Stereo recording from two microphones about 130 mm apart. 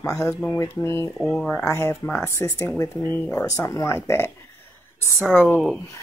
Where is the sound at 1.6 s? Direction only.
20° left (ahead or behind).